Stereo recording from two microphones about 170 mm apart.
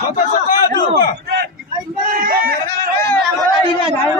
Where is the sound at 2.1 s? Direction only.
55° right (ahead or behind).